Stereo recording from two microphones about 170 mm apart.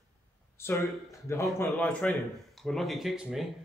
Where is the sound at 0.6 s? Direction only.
15° left (ahead or behind).